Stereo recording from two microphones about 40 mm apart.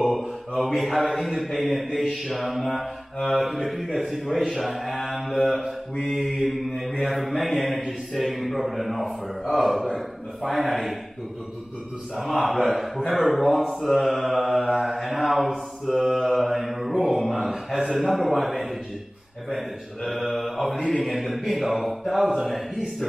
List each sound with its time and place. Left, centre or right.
0.2 s mantra: centre
12.2 s mantra: centre
13.2 s speech: centre
13.8 s mantra: centre
20.1 s mantra: centre